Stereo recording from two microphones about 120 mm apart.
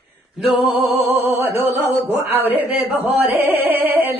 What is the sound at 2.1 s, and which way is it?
Music, 15° right (ahead or behind).